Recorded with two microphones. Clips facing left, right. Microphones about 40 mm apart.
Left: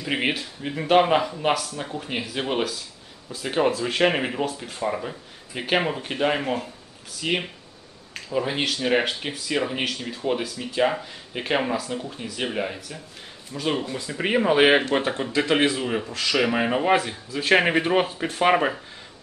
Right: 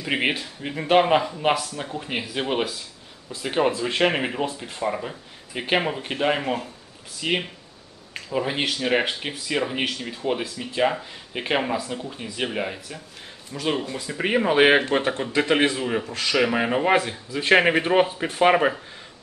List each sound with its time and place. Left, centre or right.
0.0 s speech: centre
16.1 s speech: centre
16.3 s speech: centre